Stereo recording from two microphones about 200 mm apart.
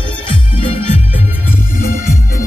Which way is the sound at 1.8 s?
45° left (ahead or behind).